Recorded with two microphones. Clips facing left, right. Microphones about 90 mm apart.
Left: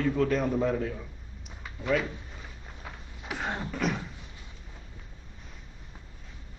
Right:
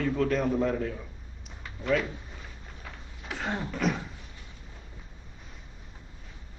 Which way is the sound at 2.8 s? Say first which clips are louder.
Left 2 dB; 15° left (ahead or behind).